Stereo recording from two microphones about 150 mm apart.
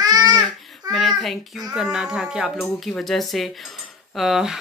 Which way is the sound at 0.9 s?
Centre (ahead or behind).